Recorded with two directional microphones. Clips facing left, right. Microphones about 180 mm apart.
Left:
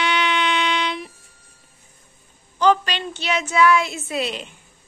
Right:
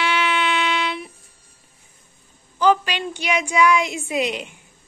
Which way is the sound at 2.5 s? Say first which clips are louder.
Even; 10° right (ahead or behind).